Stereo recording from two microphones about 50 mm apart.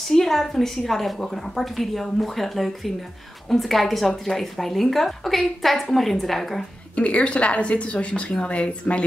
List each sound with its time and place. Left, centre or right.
0.1 s speech: centre
7.0 s a woman's voice: left